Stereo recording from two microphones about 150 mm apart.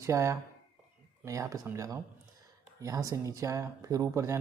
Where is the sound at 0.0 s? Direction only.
20° right (ahead or behind).